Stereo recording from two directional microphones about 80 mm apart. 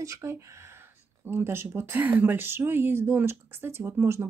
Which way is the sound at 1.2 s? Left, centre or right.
Right.